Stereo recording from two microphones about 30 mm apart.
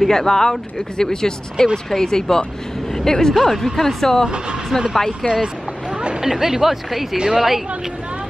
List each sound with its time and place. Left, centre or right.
0.0 s speech: centre
3.4 s speech: centre
5.3 s vehicle: right
6.2 s speech: centre